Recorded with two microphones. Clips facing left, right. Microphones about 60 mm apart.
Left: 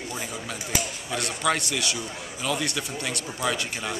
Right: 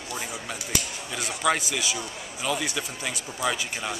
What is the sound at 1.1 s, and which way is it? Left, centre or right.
Speech, centre.